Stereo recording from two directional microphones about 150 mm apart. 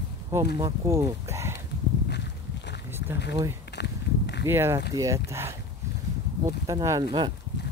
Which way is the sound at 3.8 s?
90° left.